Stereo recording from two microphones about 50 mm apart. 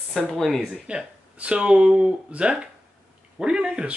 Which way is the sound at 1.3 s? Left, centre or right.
Right.